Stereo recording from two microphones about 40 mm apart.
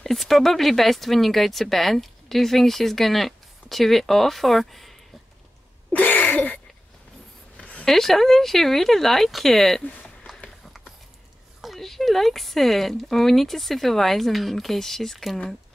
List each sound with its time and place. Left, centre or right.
0.0 s speech: centre
5.9 s a sound: left
7.8 s speech: centre
11.6 s speech: centre